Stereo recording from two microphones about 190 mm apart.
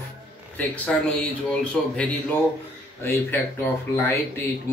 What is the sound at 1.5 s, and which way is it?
Speech, 5° left (ahead or behind).